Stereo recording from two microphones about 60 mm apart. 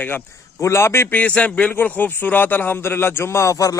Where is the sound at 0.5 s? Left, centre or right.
Left.